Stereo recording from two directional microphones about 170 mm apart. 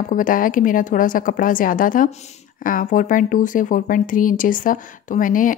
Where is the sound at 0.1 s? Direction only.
55° left (ahead or behind).